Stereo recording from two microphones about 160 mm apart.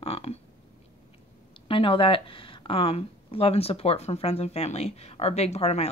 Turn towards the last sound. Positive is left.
turn(degrees=40)  # may be behind; listen again after turning